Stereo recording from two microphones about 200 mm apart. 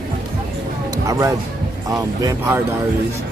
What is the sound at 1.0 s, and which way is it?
Speech, 15° right (ahead or behind).